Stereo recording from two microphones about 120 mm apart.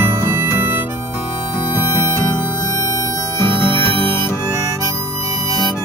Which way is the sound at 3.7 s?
45° right (ahead or behind).